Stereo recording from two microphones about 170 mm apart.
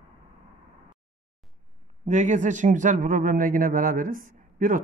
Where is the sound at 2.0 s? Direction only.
45° right (ahead or behind).